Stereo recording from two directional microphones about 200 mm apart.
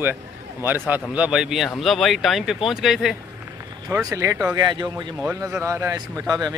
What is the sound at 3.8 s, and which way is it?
A man's voice, 15° right (ahead or behind).